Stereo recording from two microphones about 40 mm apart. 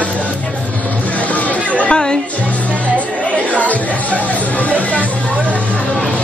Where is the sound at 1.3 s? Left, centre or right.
Left.